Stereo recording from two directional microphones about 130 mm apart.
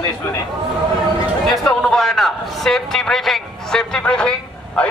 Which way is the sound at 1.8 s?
5° left (ahead or behind).